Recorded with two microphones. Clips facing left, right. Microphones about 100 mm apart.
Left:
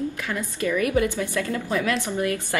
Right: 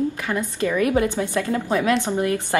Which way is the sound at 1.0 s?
20° right (ahead or behind).